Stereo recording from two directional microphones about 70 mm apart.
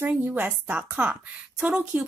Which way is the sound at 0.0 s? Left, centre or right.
Right.